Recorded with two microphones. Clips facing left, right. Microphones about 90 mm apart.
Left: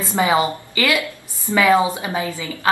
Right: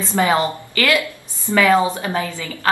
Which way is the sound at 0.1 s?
15° left (ahead or behind).